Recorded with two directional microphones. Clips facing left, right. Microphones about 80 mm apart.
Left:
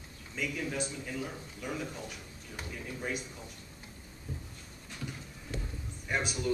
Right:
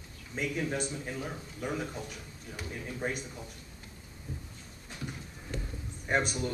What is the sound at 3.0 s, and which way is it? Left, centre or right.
Speech, right.